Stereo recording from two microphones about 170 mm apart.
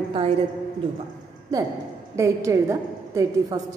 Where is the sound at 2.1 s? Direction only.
15° right (ahead or behind).